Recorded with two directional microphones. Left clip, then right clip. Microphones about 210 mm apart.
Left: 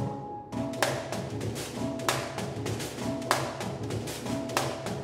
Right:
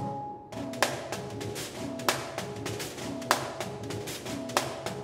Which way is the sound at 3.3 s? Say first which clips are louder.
Right 1 dB; 25° right (ahead or behind).